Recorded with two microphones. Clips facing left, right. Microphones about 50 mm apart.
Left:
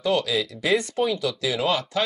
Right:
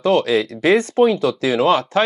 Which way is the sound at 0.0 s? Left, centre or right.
Right.